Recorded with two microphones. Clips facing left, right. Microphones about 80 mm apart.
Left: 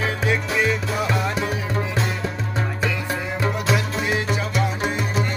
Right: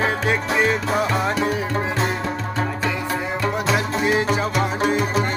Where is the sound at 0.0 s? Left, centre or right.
Right.